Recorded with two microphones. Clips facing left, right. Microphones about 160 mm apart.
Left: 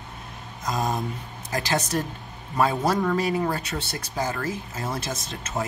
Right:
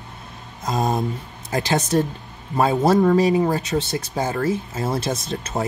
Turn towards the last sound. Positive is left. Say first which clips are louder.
# right 5 dB
turn(degrees=-35)  # may be behind; listen again after turning